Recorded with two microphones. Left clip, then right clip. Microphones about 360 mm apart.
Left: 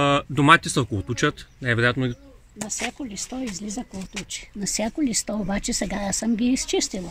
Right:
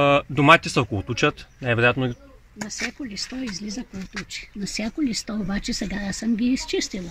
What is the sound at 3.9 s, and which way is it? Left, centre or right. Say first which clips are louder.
Speech: even; centre.